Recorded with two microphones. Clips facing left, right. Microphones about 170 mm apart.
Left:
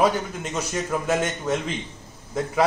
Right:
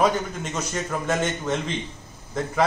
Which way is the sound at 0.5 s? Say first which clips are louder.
Left 2 dB; 10° left (ahead or behind).